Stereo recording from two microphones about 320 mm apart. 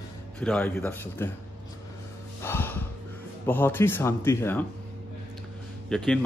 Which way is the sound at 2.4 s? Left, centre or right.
Centre.